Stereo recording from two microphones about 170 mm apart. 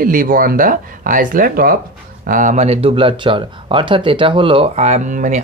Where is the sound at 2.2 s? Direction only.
50° right (ahead or behind).